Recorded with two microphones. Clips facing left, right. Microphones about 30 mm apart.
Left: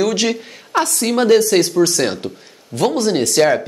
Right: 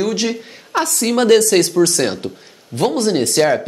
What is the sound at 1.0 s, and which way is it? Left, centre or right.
Speech, centre.